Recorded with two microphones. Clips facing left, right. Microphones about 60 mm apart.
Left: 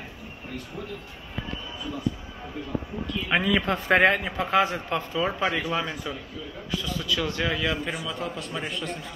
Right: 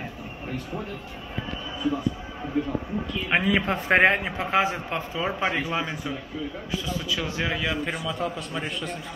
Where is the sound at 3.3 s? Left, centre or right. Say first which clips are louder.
Right 1 dB; right.